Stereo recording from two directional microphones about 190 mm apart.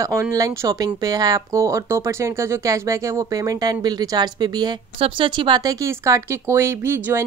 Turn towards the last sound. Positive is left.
turn(degrees=-15)  # may be behind; listen again after turning